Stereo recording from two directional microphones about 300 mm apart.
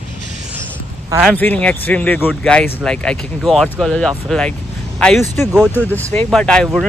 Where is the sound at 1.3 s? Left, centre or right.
Centre.